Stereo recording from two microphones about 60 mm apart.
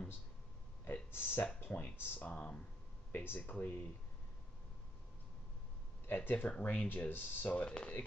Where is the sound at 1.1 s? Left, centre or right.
Left.